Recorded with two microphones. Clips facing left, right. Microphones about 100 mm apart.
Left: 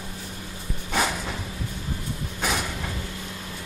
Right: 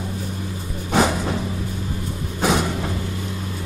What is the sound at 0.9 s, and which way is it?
Music, 30° right (ahead or behind).